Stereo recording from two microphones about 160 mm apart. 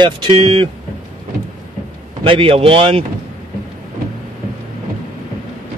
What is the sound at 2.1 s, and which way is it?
Speech, 35° right (ahead or behind).